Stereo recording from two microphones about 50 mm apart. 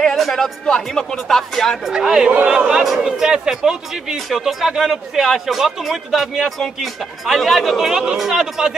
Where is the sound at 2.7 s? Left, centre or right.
Centre.